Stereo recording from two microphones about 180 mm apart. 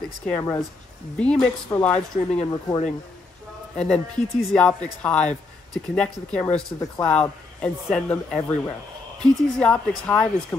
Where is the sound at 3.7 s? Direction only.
5° left (ahead or behind).